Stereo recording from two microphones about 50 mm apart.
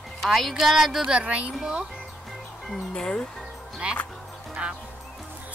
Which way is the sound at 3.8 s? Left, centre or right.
Right.